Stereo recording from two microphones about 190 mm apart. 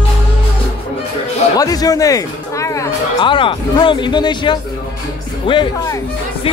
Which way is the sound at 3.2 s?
25° left (ahead or behind).